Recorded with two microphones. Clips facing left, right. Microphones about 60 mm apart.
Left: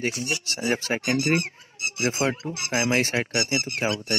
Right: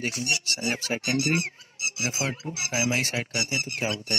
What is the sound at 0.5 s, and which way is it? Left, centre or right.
Speech, left.